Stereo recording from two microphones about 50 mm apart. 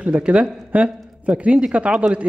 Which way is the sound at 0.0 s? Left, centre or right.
Right.